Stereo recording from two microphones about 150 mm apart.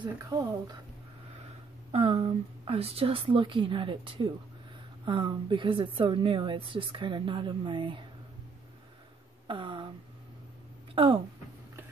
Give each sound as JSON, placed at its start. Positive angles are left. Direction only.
{"t": 0.0, "sound": "speech", "side_deg": -25}
{"t": 1.9, "sound": "a woman's voice", "side_deg": -40}
{"t": 9.5, "sound": "a sound", "side_deg": -35}
{"t": 11.0, "sound": "a woman's voice", "side_deg": -35}